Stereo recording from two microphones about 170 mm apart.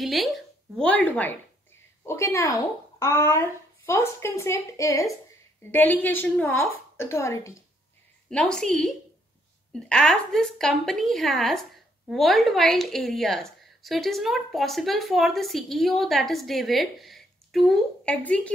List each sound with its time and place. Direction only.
0.0 s a child's voice: centre (ahead or behind); by 7.6 s 15° left (ahead or behind)
8.3 s a woman's voice: 5° left (ahead or behind)